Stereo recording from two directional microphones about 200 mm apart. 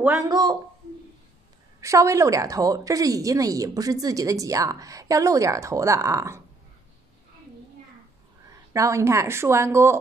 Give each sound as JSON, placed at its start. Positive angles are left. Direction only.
{"t": 0.0, "sound": "speech", "side_deg": -15}
{"t": 1.8, "sound": "a woman's voice", "side_deg": -15}
{"t": 8.5, "sound": "speech", "side_deg": -15}